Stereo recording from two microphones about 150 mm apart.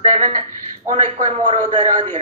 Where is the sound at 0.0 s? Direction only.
55° right (ahead or behind).